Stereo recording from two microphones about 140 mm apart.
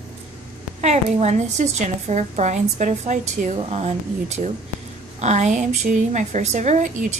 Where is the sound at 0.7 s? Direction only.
55° right (ahead or behind).